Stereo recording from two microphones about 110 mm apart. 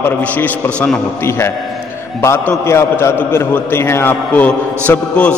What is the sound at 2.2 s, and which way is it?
A man's voice, 20° left (ahead or behind).